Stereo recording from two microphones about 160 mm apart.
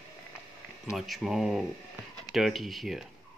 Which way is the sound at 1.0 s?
Centre (ahead or behind).